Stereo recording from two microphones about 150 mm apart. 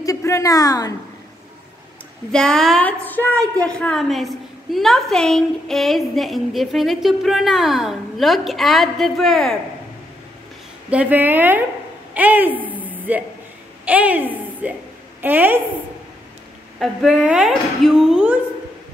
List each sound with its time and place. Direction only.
0.0 s a woman's voice: 20° left (ahead or behind)
2.3 s a woman's voice: 5° left (ahead or behind)
10.9 s speech: 10° right (ahead or behind)
12.8 s a sound: 10° right (ahead or behind)
13.8 s a woman's voice: 10° right (ahead or behind)
16.8 s a woman's voice: 5° right (ahead or behind)